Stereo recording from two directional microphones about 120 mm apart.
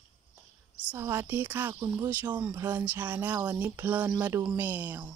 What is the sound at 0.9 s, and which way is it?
Speech, 20° right (ahead or behind).